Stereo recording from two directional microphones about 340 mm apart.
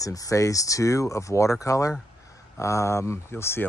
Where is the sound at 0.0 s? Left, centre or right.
Centre.